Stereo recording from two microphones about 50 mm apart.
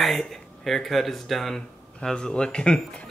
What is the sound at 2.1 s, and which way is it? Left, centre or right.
Speech, centre.